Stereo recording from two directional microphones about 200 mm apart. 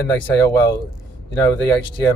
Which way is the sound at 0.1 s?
15° left (ahead or behind).